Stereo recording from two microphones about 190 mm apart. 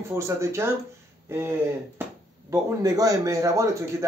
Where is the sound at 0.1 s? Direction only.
15° right (ahead or behind).